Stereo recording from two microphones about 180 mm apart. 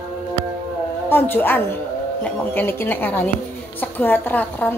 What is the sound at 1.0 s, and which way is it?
A woman's voice, 10° left (ahead or behind).